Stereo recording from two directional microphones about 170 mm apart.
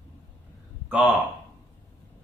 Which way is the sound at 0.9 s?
10° right (ahead or behind).